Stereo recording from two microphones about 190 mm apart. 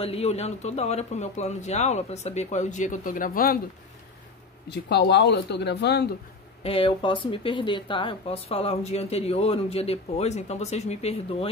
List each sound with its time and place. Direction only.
0.0 s speech: 30° left (ahead or behind); by 3.5 s 45° left (ahead or behind)
4.6 s speech: 60° left (ahead or behind)
6.6 s speech: 30° left (ahead or behind)